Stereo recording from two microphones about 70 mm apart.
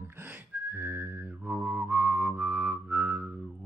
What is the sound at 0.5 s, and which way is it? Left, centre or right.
Music, right.